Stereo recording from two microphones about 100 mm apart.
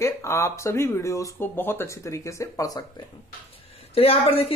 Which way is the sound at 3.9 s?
75° left (ahead or behind).